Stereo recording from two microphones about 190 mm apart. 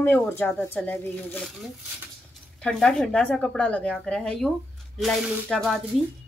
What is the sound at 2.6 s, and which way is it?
A woman's voice, 5° left (ahead or behind).